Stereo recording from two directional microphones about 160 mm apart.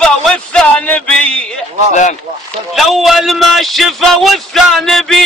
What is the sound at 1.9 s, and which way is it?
Speech, 50° left (ahead or behind).